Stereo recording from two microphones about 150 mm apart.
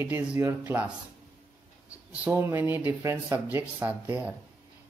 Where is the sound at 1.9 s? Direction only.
15° right (ahead or behind).